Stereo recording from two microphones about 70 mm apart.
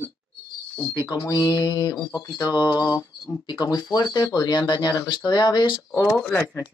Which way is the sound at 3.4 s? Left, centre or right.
Left.